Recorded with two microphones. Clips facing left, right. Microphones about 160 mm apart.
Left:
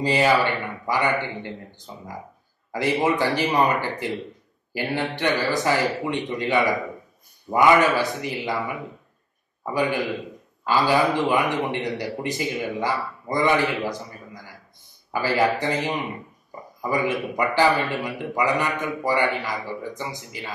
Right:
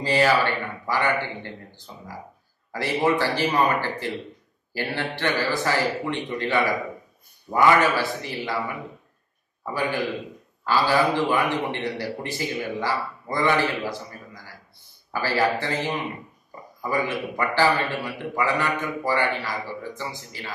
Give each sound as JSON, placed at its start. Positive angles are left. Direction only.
{"t": 0.0, "sound": "a man's voice", "side_deg": 15}
{"t": 9.8, "sound": "a man's voice", "side_deg": 20}